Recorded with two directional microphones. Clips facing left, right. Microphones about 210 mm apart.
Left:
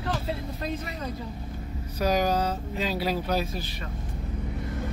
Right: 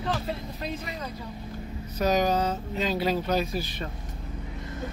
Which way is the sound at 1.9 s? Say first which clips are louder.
Right 1 dB; 10° left (ahead or behind).